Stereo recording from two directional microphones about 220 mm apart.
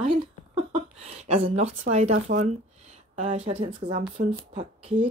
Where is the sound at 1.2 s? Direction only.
30° right (ahead or behind).